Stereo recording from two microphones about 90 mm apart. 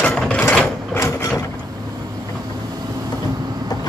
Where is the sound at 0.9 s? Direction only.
35° left (ahead or behind).